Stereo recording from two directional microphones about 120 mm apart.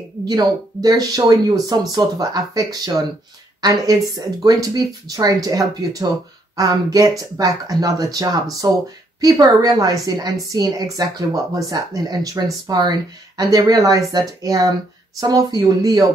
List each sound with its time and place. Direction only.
0.2 s speech: 35° right (ahead or behind)